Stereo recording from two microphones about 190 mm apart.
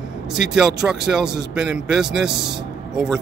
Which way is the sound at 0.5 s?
5° right (ahead or behind).